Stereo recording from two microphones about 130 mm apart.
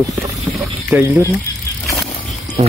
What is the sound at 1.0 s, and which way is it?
Speech, 20° right (ahead or behind).